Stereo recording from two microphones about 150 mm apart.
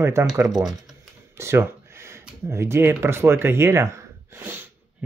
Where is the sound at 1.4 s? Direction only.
15° right (ahead or behind).